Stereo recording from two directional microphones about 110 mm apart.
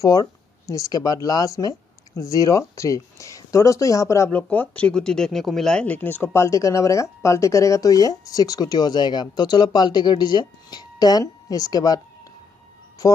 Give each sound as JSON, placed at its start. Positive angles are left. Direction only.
{"t": 0.0, "sound": "speech", "side_deg": 35}
{"t": 4.3, "sound": "speech", "side_deg": 15}
{"t": 13.0, "sound": "speech", "side_deg": 35}